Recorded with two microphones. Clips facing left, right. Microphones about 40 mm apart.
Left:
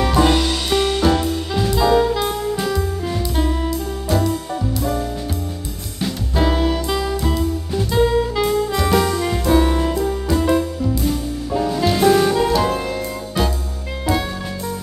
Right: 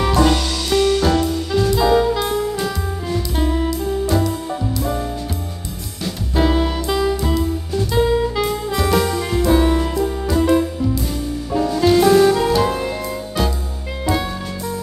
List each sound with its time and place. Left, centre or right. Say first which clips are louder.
0.2 s music: left 1 dB; centre
1.0 s music: even; centre
6.3 s music: right 1 dB; centre